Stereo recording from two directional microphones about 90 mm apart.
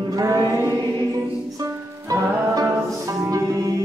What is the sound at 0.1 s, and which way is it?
Chant, 40° right (ahead or behind).